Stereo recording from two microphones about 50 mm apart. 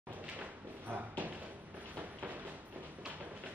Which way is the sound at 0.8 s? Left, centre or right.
Right.